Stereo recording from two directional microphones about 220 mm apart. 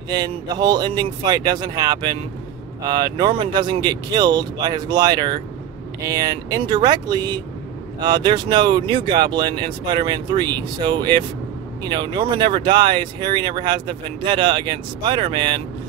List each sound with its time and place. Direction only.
0.1 s speech: 20° right (ahead or behind)